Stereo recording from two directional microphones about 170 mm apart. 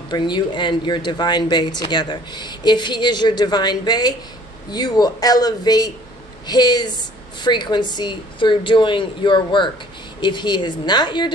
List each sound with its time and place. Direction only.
0.1 s speech: 25° left (ahead or behind)